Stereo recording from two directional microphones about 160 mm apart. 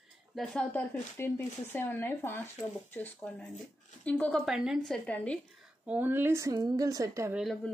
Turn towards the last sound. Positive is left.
turn(degrees=-5)  # may be behind; listen again after turning